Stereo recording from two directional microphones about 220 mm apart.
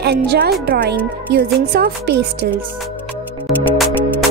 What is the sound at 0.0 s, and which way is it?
A woman's voice, 50° right (ahead or behind).